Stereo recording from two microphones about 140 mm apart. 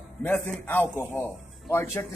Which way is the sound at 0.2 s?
15° left (ahead or behind).